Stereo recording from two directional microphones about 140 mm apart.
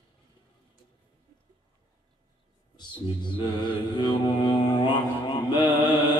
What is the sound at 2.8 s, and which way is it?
Speech, 30° left (ahead or behind).